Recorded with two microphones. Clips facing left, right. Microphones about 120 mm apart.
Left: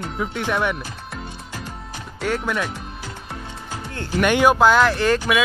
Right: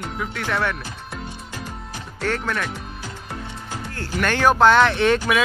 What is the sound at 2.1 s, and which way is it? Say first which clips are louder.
Speech: left 1 dB; 10° left (ahead or behind).